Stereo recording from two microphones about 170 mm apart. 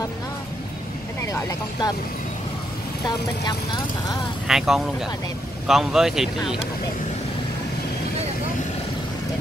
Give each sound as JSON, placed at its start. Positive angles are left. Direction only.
{"t": 1.3, "sound": "speech", "side_deg": 25}
{"t": 4.5, "sound": "speech", "side_deg": 0}